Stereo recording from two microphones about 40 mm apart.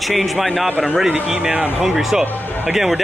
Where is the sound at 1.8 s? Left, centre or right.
Centre.